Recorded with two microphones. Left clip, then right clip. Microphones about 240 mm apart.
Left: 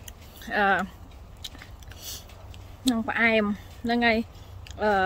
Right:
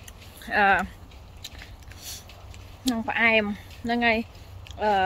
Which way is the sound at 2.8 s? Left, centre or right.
Centre.